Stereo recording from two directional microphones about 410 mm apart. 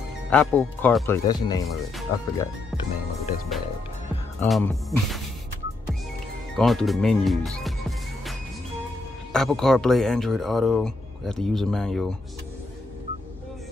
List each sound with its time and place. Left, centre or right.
0.3 s speech: centre
4.4 s speech: centre
6.5 s speech: centre
9.3 s speech: centre